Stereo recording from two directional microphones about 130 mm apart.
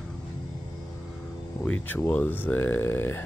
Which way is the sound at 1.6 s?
15° left (ahead or behind).